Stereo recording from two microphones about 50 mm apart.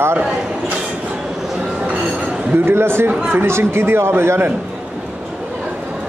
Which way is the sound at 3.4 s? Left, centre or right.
Right.